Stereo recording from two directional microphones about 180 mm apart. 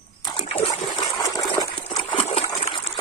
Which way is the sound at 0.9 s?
20° left (ahead or behind).